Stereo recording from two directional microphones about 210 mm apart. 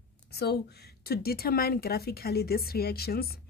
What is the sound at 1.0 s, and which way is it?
A woman's voice, 45° left (ahead or behind).